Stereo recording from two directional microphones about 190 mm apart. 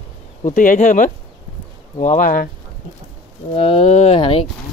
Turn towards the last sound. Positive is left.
turn(degrees=30)  # may be behind; listen again after turning